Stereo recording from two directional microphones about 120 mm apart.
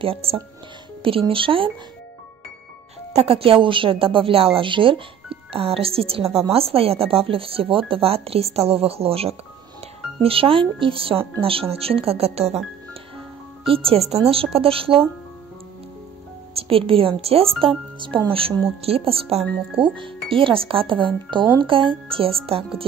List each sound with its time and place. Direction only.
0.0 s speech: 50° right (ahead or behind)
3.1 s speech: 55° right (ahead or behind)
13.7 s speech: 50° right (ahead or behind)
16.5 s speech: 50° right (ahead or behind)